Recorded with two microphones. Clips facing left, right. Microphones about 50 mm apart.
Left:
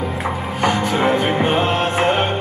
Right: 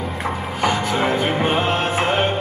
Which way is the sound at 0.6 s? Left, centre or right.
Centre.